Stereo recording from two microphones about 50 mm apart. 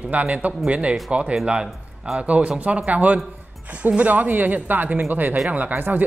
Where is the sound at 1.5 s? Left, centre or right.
Centre.